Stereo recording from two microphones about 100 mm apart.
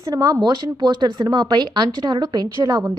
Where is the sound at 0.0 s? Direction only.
35° right (ahead or behind).